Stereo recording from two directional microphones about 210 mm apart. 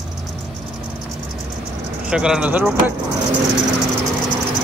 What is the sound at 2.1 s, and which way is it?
Speech, 5° right (ahead or behind).